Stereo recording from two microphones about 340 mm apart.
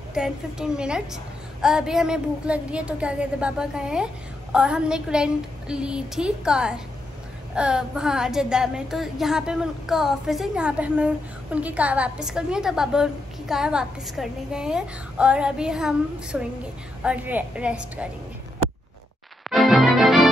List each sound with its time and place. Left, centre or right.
0.1 s a woman's voice: centre
19.5 s music: centre